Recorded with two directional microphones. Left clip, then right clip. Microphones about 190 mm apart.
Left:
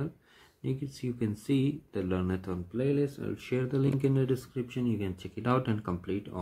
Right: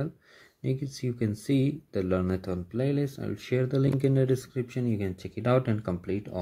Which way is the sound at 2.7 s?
35° right (ahead or behind).